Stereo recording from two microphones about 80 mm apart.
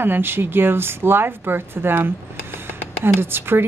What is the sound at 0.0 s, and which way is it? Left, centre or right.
Speech, right.